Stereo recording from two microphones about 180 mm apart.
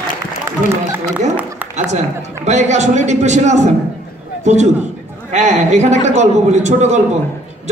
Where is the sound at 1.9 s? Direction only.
40° right (ahead or behind).